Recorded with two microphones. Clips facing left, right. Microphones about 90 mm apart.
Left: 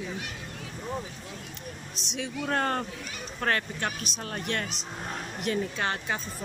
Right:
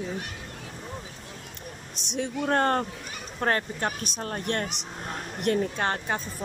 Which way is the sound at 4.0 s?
40° right (ahead or behind).